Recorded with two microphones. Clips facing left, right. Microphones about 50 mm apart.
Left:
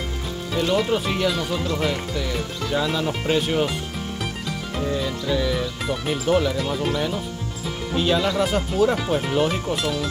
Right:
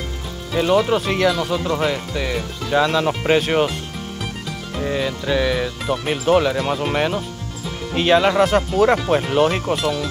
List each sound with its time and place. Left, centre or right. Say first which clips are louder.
0.6 s speech: right 5 dB; right
4.8 s speech: right 4 dB; right
6.9 s speech: right 4 dB; right